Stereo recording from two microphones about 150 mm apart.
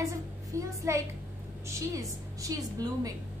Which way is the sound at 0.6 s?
20° right (ahead or behind).